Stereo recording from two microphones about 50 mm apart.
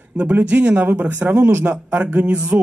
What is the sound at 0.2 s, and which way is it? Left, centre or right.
A man's voice, right.